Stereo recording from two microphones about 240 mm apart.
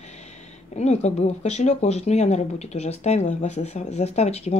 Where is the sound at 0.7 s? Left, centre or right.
Left.